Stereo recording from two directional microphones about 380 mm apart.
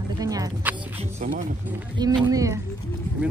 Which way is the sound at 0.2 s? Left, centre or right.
Centre.